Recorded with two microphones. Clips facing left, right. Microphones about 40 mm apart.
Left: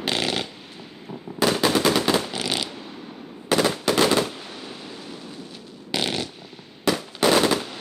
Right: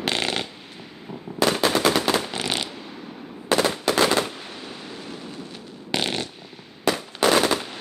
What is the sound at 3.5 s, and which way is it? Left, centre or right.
Machine gun, centre.